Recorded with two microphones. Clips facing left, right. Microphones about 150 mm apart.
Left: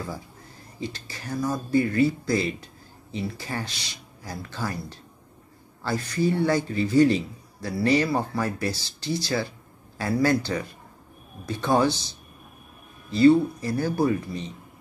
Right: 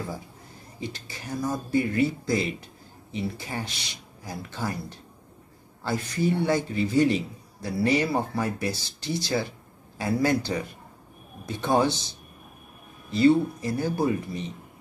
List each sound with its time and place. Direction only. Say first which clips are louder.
0.7 s a man's voice: left 2 dB; 20° right (ahead or behind)
13.1 s a man's voice: left 3 dB; 20° right (ahead or behind)